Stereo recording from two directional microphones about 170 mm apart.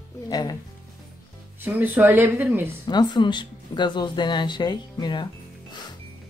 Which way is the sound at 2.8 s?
25° left (ahead or behind).